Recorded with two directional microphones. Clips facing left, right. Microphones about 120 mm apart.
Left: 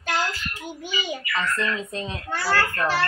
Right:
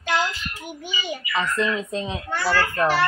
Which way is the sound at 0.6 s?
15° right (ahead or behind).